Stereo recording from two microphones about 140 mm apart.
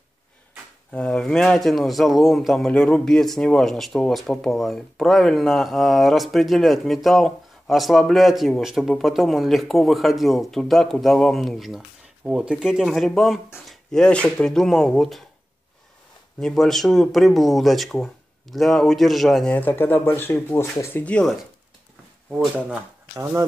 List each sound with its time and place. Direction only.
0.9 s a man's voice: 5° left (ahead or behind)
16.3 s a man's voice: 5° left (ahead or behind)
19.5 s speech: 15° left (ahead or behind)
23.1 s speech: 20° right (ahead or behind)